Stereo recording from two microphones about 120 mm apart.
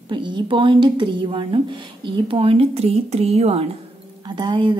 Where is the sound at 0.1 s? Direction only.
40° right (ahead or behind); by 3.6 s 60° right (ahead or behind).